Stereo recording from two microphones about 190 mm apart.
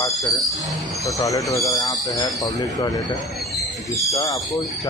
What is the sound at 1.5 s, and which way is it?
Speech, 15° left (ahead or behind).